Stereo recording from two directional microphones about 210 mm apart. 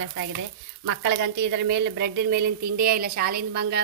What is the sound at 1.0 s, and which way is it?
Speech, 55° right (ahead or behind).